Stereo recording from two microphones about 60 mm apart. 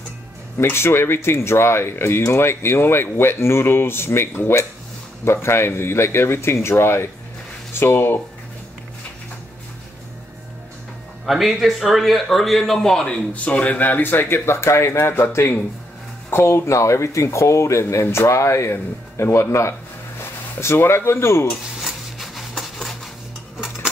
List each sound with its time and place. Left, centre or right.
0.6 s speech: left
11.2 s a man's voice: centre; by 19.4 s left
20.6 s speech: left
21.8 s a sound: centre